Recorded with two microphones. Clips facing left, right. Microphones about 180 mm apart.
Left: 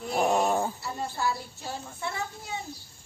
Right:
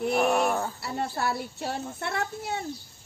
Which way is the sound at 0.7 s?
65° right (ahead or behind).